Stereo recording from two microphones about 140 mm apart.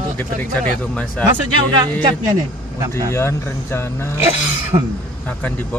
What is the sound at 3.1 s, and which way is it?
Speech, 20° left (ahead or behind).